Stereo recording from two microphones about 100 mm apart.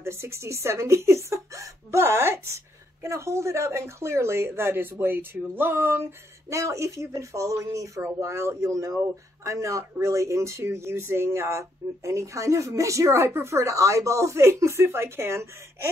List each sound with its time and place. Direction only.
0.0 s speech: 25° right (ahead or behind)